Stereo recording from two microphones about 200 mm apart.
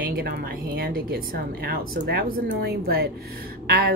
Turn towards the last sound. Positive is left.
turn(degrees=-50)  # may be behind; listen again after turning